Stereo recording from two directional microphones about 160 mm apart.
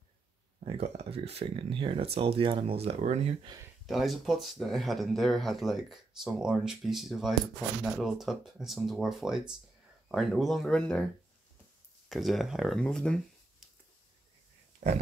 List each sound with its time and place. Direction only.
0.7 s speech: 40° right (ahead or behind)
3.8 s speech: centre (ahead or behind)
12.1 s speech: centre (ahead or behind)